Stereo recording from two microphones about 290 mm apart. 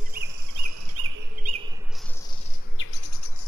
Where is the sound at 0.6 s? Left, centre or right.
Right.